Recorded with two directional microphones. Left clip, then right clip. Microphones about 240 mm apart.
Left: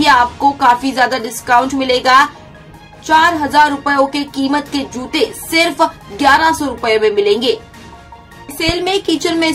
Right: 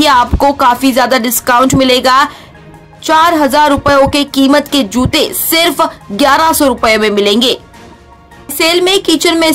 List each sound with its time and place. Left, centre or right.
0.0 s a woman's voice: right
8.5 s a woman's voice: right